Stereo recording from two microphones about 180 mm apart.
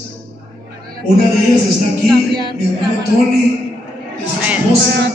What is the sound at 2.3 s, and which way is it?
Speech, 25° right (ahead or behind).